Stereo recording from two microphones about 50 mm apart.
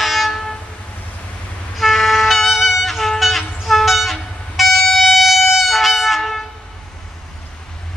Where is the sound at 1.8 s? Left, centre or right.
Centre.